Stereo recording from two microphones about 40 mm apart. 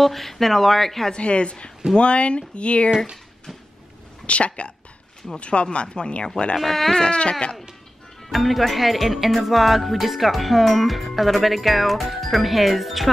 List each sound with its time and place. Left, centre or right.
0.0 s speech: centre
1.1 s speech: left
4.3 s speech: left
6.5 s speech: centre
6.9 s speech: left
8.3 s speech: centre